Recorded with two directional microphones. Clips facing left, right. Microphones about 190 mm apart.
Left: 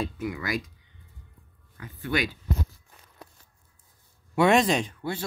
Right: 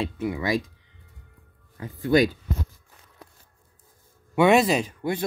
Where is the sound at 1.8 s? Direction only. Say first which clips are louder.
Right 9 dB; 35° right (ahead or behind).